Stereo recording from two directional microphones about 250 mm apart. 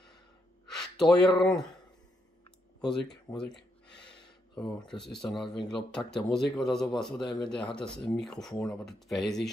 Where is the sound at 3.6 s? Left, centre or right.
Left.